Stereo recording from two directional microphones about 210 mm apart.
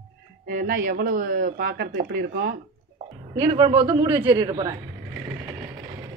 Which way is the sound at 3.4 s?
25° right (ahead or behind).